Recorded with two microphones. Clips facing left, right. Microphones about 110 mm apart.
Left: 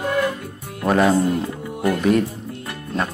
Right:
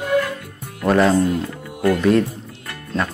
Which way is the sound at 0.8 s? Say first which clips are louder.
Right 1 dB; 15° left (ahead or behind).